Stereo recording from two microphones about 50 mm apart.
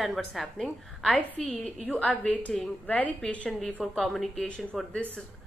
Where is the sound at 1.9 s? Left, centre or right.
Left.